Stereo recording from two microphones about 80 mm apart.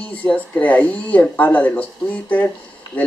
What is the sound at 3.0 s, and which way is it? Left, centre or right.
Speech, centre.